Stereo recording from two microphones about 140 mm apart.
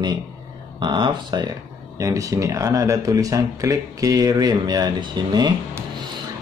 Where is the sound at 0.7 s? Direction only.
35° right (ahead or behind).